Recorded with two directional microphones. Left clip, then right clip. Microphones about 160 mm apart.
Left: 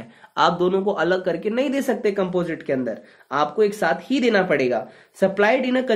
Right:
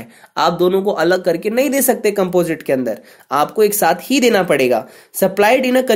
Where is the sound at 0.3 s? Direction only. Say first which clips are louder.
Right 4 dB; 30° right (ahead or behind).